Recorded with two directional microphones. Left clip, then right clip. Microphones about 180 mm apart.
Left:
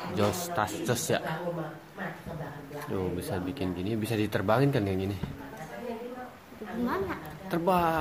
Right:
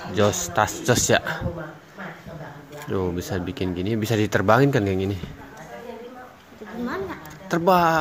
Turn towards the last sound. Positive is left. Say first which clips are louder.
# right 8 dB
turn(degrees=-35)  # may be behind; listen again after turning